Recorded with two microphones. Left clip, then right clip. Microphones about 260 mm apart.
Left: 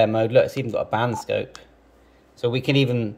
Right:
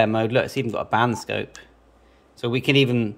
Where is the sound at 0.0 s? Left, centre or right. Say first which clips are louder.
Left 3 dB; centre.